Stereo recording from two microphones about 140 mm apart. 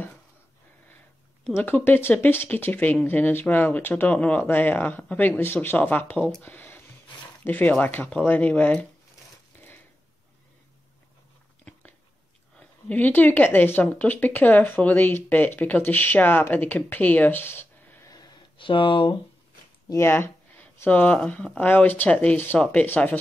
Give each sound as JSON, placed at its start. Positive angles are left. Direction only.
{"t": 1.5, "sound": "a woman's voice", "side_deg": 10}
{"t": 12.5, "sound": "a woman's voice", "side_deg": 10}
{"t": 18.1, "sound": "a sound", "side_deg": 30}
{"t": 19.9, "sound": "a woman's voice", "side_deg": 15}